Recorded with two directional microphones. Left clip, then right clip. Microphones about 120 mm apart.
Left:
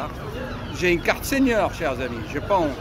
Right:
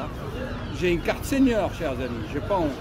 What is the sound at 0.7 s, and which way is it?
Speech, 20° right (ahead or behind).